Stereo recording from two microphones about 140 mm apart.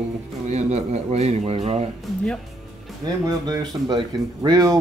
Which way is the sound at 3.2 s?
30° right (ahead or behind).